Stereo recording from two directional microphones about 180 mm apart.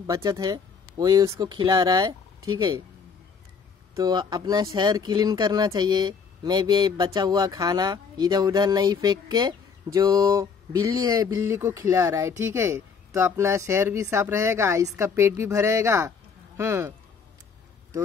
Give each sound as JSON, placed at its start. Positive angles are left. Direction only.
{"t": 0.0, "sound": "speech", "side_deg": -20}
{"t": 3.9, "sound": "speech", "side_deg": -25}